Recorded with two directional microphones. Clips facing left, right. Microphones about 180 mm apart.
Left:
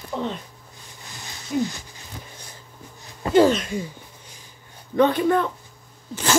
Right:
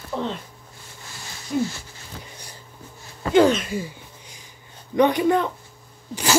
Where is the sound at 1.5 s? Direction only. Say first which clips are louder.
Even; 15° left (ahead or behind).